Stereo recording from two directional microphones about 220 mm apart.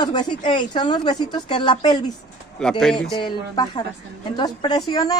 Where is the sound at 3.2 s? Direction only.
20° left (ahead or behind).